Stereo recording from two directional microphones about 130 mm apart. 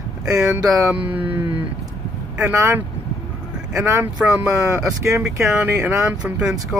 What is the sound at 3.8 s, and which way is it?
Speech, 20° right (ahead or behind).